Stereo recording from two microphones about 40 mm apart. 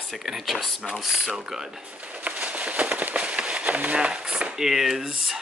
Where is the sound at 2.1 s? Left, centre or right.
Right.